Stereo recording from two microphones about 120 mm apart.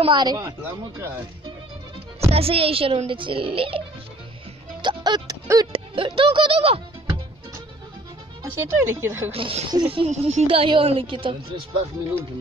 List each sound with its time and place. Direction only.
0.0 s music: 40° right (ahead or behind)
0.6 s speech: 15° right (ahead or behind)
2.1 s speech: 55° right (ahead or behind)
4.8 s music: 35° right (ahead or behind)
5.7 s music: 45° right (ahead or behind)
8.5 s speech: 20° right (ahead or behind)
9.3 s speech: 55° right (ahead or behind)